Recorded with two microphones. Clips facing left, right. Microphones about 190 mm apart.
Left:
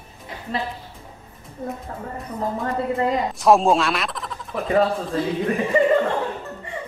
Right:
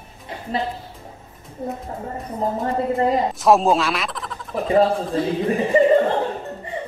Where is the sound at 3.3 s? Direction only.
Centre (ahead or behind).